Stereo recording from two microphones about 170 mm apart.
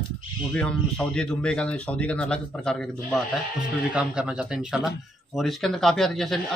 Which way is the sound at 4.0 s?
5° right (ahead or behind).